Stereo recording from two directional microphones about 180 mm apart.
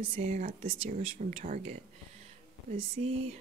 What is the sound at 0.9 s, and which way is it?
Speech, 45° right (ahead or behind).